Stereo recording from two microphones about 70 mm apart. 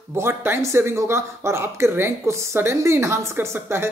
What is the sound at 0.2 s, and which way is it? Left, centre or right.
Speech, right.